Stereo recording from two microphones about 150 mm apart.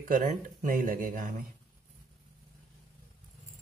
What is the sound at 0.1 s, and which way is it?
Speech, 60° right (ahead or behind).